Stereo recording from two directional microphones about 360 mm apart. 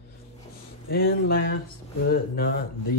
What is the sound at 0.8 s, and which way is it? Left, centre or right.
Speech, left.